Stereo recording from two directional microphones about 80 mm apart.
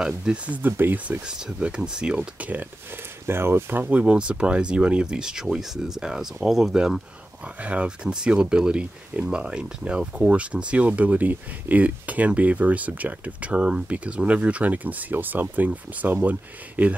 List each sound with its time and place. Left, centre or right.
0.0 s speech: centre
3.3 s speech: right
3.8 s speech: centre